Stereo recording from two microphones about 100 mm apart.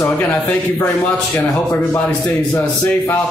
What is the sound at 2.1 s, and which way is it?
Speech, 15° left (ahead or behind).